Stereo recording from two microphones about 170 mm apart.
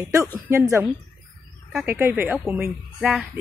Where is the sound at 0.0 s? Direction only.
20° right (ahead or behind).